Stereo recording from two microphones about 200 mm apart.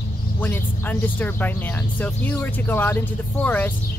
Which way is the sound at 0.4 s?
10° left (ahead or behind).